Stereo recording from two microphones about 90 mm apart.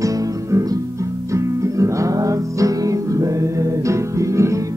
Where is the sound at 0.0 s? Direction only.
40° right (ahead or behind).